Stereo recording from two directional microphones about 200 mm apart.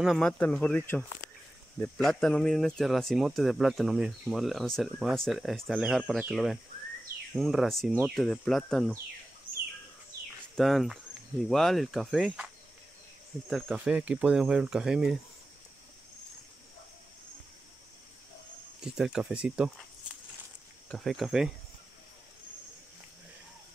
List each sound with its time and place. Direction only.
0.0 s speech: centre (ahead or behind)
10.5 s speech: centre (ahead or behind)
13.5 s speech: centre (ahead or behind)
18.8 s speech: 5° right (ahead or behind)